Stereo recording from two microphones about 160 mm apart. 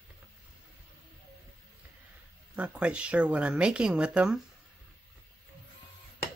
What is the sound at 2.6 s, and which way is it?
Speech, 5° right (ahead or behind).